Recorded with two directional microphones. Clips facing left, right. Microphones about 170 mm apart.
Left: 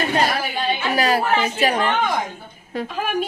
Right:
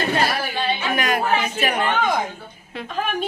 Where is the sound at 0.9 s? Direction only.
35° left (ahead or behind).